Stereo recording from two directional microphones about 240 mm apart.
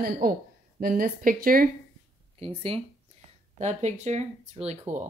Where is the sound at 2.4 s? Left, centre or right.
Right.